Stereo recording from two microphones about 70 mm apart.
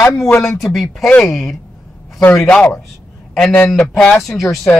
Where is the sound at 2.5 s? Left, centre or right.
Centre.